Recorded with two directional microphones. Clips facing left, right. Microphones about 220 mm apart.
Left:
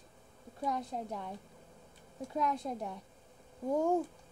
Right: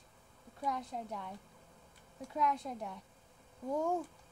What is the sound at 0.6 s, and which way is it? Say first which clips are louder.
A woman's voice: left 3 dB; 35° left (ahead or behind).